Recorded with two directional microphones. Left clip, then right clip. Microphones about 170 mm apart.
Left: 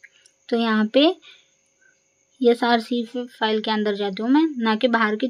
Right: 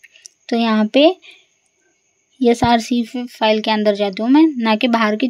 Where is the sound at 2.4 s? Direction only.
30° right (ahead or behind).